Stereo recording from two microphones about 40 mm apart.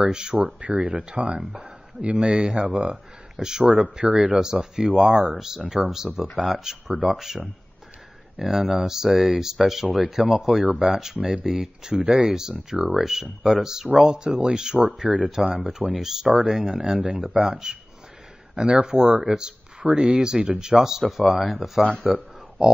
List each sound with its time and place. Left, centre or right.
0.0 s speech: centre
3.3 s speech: centre
3.6 s speech: right
15.9 s speech: centre
21.3 s speech: centre
22.0 s a sound: centre